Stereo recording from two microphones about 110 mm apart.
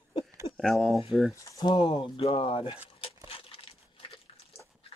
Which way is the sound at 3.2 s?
55° left (ahead or behind).